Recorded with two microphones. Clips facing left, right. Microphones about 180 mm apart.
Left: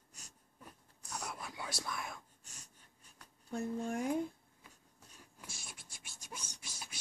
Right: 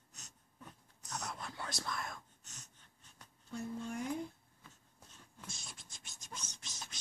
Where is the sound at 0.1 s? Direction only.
10° left (ahead or behind).